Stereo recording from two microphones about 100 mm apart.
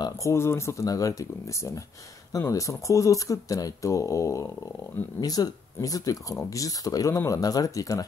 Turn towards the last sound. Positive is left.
turn(degrees=35)  # may be behind; listen again after turning